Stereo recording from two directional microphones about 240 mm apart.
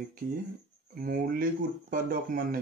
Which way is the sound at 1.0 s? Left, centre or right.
Right.